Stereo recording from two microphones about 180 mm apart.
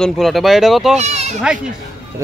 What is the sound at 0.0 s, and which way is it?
Speech, centre (ahead or behind).